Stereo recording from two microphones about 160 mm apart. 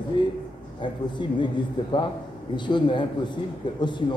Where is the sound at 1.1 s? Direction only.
30° left (ahead or behind).